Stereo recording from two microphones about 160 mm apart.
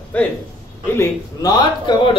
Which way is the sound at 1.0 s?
25° left (ahead or behind).